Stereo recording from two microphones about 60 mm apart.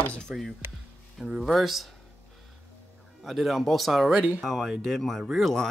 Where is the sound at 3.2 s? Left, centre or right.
Centre.